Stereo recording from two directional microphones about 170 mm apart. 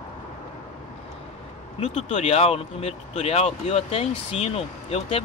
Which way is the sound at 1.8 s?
40° left (ahead or behind).